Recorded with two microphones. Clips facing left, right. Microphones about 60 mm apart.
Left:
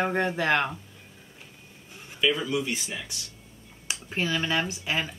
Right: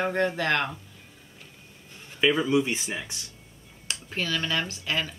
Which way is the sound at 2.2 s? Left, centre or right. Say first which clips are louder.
Right 3 dB; right.